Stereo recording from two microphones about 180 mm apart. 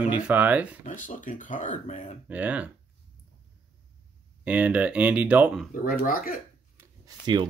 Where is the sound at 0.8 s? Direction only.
45° left (ahead or behind).